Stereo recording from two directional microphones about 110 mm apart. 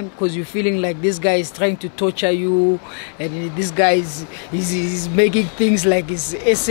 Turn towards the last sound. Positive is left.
turn(degrees=-10)  # may be behind; listen again after turning